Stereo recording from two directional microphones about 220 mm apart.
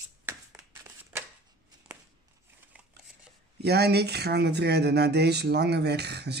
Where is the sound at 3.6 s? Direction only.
50° right (ahead or behind).